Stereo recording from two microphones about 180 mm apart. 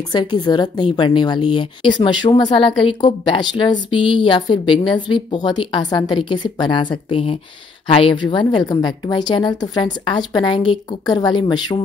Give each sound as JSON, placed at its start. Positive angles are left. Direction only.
{"t": 0.1, "sound": "speech", "side_deg": 25}